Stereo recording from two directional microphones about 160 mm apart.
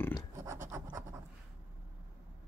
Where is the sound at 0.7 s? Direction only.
20° right (ahead or behind).